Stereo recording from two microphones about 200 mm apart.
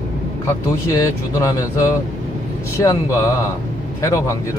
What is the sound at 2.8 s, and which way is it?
Speech, 15° left (ahead or behind).